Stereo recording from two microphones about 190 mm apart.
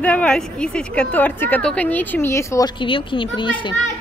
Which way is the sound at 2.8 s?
25° left (ahead or behind).